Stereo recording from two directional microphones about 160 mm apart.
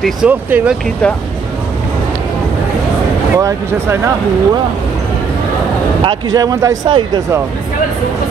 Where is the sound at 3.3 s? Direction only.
15° right (ahead or behind).